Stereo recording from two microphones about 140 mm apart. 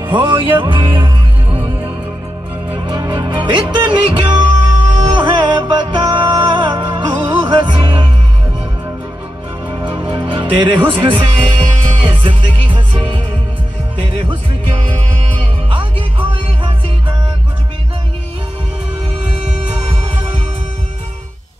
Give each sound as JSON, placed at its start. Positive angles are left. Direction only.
{"t": 0.0, "sound": "music", "side_deg": -35}
{"t": 2.8, "sound": "music", "side_deg": -30}
{"t": 10.1, "sound": "music", "side_deg": -35}